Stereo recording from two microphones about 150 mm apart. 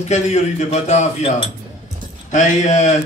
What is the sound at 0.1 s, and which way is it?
A man's voice, 50° left (ahead or behind).